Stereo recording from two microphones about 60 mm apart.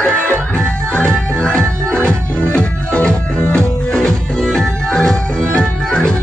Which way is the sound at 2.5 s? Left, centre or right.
Left.